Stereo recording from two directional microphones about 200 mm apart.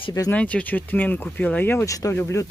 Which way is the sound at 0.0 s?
15° left (ahead or behind).